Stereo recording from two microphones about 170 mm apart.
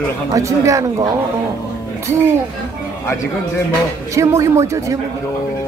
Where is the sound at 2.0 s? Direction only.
15° right (ahead or behind).